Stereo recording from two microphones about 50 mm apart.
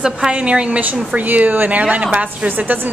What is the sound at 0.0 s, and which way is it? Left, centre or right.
A woman's voice, centre.